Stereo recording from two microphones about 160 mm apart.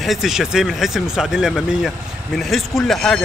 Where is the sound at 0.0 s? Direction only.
Centre (ahead or behind).